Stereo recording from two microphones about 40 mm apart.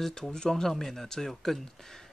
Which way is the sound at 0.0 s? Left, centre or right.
Centre.